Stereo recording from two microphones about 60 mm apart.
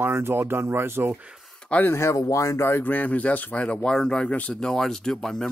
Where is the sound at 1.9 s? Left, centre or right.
Left.